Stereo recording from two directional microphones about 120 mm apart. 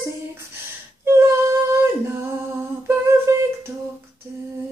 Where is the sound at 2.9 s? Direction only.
20° right (ahead or behind).